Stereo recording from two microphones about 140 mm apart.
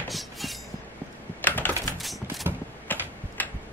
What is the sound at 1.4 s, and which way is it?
Typing, 15° left (ahead or behind).